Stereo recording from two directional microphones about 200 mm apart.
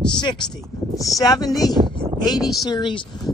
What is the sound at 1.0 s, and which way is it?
Speech, 15° left (ahead or behind).